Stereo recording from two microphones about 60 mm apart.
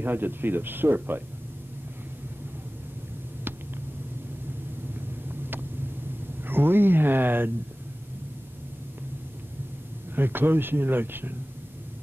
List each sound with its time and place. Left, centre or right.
0.0 s speech: right
5.3 s vehicle: right
6.4 s speech: right
10.1 s speech: right